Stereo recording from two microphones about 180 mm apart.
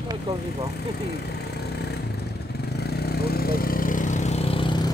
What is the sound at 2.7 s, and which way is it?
Vehicle, 60° left (ahead or behind).